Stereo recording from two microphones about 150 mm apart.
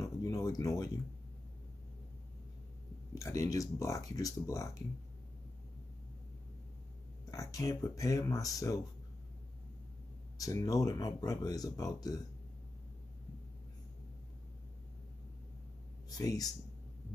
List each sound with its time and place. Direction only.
0.0 s a sound: 25° left (ahead or behind)
3.2 s speech: 20° left (ahead or behind)
7.2 s speech: 20° left (ahead or behind)
10.3 s speech: 25° left (ahead or behind)
16.1 s speech: 25° left (ahead or behind)